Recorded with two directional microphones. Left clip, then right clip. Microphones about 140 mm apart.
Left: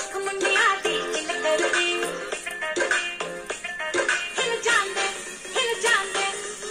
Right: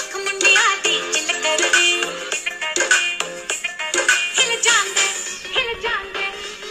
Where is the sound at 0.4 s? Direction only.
30° right (ahead or behind).